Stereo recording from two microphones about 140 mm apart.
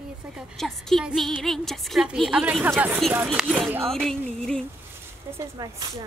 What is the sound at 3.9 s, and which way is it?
Speech, 5° left (ahead or behind).